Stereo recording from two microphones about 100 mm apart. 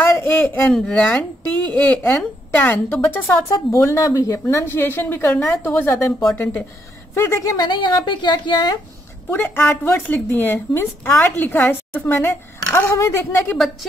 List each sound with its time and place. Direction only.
0.4 s speech: 15° left (ahead or behind)
7.6 s speech: 50° left (ahead or behind)
9.3 s speech: 20° left (ahead or behind)